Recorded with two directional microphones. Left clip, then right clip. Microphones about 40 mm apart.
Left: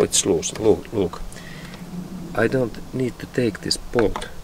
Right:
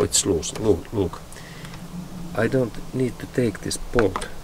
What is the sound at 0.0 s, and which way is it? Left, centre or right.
Speech, left.